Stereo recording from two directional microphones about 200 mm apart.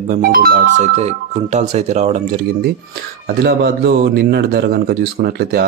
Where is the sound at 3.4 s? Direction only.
55° right (ahead or behind).